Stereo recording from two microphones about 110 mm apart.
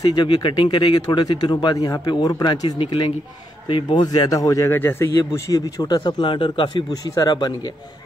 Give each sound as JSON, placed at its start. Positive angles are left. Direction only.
{"t": 0.0, "sound": "speech", "side_deg": 40}
{"t": 6.9, "sound": "speech", "side_deg": 35}